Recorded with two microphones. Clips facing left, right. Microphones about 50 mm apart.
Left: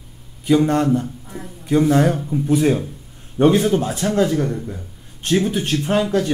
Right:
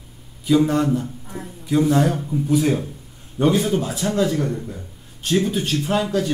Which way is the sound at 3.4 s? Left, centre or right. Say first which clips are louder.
Left 4 dB; left.